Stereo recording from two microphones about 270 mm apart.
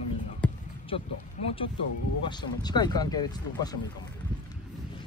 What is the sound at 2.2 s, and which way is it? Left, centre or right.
Speech, centre.